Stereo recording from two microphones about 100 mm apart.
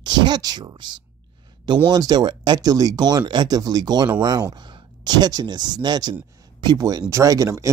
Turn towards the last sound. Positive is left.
turn(degrees=-35)  # may be behind; listen again after turning